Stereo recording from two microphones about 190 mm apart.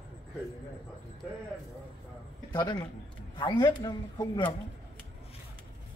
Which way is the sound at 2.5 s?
20° left (ahead or behind).